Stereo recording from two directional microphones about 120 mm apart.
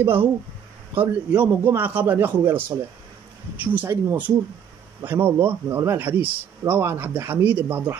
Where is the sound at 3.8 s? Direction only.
20° right (ahead or behind).